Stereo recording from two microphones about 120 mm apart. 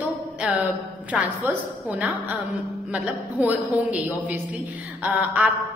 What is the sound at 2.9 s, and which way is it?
A woman's voice, 10° right (ahead or behind).